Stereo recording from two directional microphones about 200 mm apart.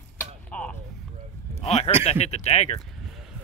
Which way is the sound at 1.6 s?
30° left (ahead or behind).